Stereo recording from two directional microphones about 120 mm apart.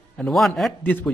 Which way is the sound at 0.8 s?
15° left (ahead or behind).